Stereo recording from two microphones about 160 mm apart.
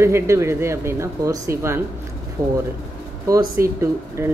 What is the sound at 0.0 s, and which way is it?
Speech, 15° right (ahead or behind).